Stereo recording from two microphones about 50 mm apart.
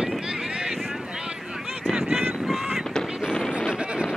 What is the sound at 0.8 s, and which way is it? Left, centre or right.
Boat, centre.